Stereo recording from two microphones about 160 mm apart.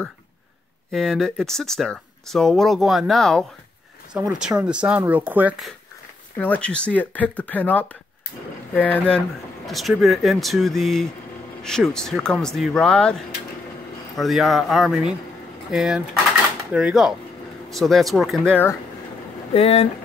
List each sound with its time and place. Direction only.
0.9 s speech: centre (ahead or behind)
6.3 s speech: 10° left (ahead or behind)
19.5 s speech: 40° left (ahead or behind)